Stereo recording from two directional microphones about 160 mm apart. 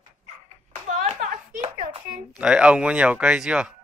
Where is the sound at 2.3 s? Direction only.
5° right (ahead or behind).